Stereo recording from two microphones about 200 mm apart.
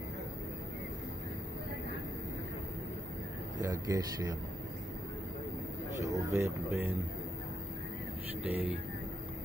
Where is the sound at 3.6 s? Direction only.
15° right (ahead or behind).